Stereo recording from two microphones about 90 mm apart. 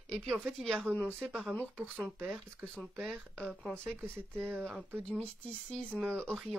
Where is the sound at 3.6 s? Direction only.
5° right (ahead or behind).